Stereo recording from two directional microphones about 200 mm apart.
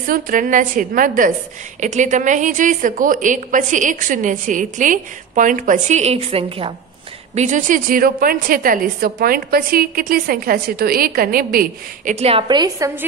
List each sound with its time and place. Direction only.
0.0 s a woman's voice: 45° right (ahead or behind); by 13.0 s 15° right (ahead or behind)